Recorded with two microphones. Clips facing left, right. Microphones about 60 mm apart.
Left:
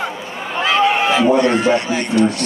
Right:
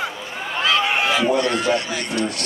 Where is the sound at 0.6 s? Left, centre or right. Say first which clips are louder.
Left 4 dB; left.